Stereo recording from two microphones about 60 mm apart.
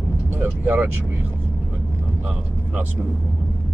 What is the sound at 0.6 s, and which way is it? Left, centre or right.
Speech, right.